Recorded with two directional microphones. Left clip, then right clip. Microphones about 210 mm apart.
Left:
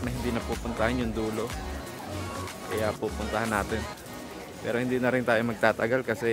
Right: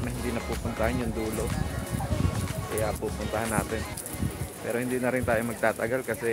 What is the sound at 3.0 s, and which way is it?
Speech, 25° left (ahead or behind).